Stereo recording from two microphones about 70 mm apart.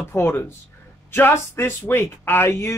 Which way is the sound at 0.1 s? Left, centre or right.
Left.